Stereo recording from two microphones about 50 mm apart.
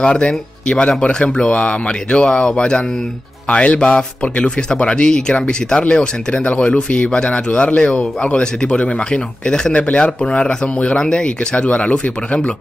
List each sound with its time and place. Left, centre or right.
0.0 s a man's voice: centre